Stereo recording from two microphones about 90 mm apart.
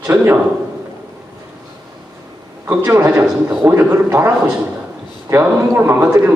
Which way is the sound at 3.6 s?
25° right (ahead or behind).